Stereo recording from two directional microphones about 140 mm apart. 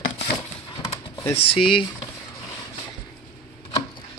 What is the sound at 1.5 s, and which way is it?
Speech, 40° left (ahead or behind).